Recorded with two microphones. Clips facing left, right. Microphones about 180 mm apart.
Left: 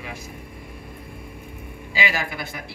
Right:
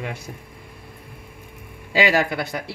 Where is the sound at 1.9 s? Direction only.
65° right (ahead or behind).